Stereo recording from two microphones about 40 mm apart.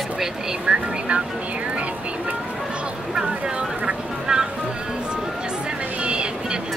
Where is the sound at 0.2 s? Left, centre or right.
Centre.